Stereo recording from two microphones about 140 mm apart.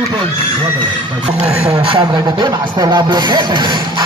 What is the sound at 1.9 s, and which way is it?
Speech, 30° right (ahead or behind).